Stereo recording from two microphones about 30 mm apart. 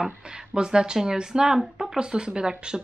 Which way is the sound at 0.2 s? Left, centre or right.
Right.